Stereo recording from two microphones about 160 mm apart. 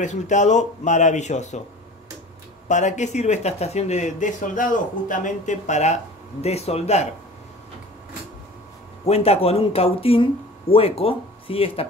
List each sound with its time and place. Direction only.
0.0 s speech: 50° left (ahead or behind)
2.7 s speech: 50° left (ahead or behind)
9.0 s speech: 40° left (ahead or behind)